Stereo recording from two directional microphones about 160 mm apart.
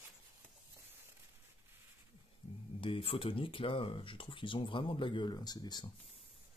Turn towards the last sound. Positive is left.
turn(degrees=25)  # may be behind; listen again after turning